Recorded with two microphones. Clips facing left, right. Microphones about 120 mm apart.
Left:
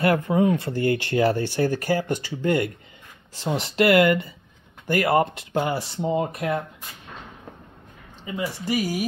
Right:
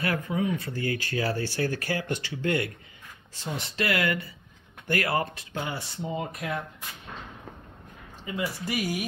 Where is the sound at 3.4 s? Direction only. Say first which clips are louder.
Left 8 dB; 90° left.